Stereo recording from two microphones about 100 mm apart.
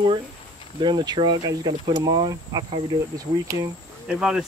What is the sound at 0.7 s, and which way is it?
Speech, 45° right (ahead or behind).